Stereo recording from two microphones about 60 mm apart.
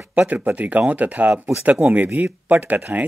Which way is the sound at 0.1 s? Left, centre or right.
Right.